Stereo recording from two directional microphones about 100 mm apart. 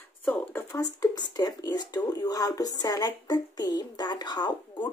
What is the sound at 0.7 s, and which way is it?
Speech, 40° left (ahead or behind).